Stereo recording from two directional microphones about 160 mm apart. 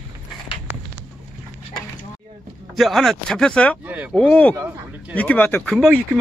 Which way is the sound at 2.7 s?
Centre (ahead or behind).